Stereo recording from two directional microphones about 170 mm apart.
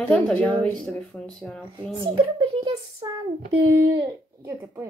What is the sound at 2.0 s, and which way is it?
Speech, 30° right (ahead or behind).